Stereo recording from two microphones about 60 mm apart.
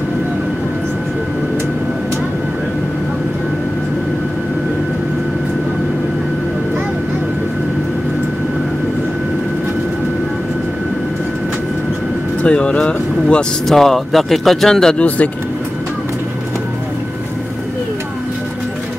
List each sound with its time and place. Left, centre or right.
12.4 s speech: centre
13.7 s speech: centre
15.0 s speech: left